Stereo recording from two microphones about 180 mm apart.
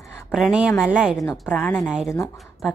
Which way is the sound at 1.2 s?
15° left (ahead or behind).